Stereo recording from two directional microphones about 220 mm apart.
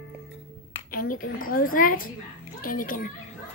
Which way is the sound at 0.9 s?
40° left (ahead or behind).